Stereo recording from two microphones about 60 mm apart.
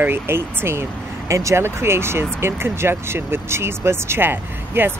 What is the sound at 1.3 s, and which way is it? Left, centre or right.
Speech, right.